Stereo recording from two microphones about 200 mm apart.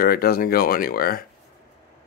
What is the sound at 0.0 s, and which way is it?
Speech, 50° left (ahead or behind).